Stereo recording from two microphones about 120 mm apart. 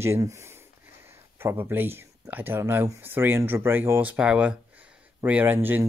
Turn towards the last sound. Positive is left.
turn(degrees=-15)  # may be behind; listen again after turning